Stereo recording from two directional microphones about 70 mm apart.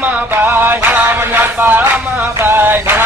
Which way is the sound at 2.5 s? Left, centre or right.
Right.